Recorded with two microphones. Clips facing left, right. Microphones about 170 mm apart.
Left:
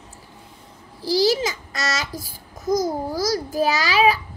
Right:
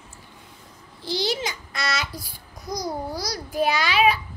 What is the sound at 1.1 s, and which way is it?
A child's voice, 35° left (ahead or behind).